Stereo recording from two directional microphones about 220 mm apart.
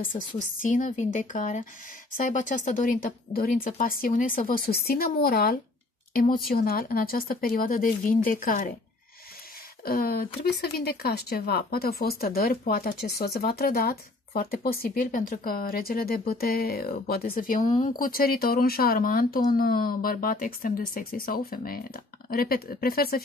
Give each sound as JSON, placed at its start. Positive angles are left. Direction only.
{"t": 0.1, "sound": "speech", "side_deg": 30}
{"t": 9.8, "sound": "speech", "side_deg": 45}